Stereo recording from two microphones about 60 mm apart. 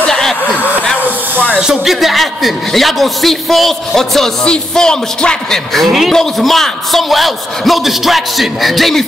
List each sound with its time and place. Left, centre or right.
0.1 s a sound: centre
1.6 s a man's voice: centre
5.7 s a man's voice: centre